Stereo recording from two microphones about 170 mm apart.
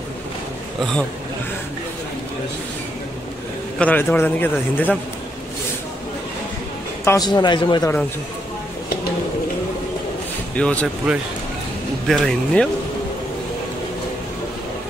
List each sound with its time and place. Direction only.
3.8 s a man's voice: 10° left (ahead or behind)
7.1 s a man's voice: 25° left (ahead or behind)
10.5 s speech: 5° left (ahead or behind)
12.1 s speech: 5° left (ahead or behind)